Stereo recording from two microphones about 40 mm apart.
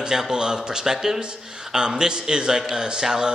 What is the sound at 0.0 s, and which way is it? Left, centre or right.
A man's voice, centre.